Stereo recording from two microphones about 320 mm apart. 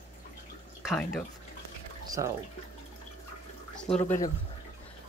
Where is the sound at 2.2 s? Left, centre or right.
Centre.